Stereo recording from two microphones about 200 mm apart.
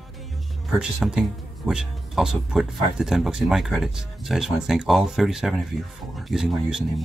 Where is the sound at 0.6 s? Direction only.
5° right (ahead or behind).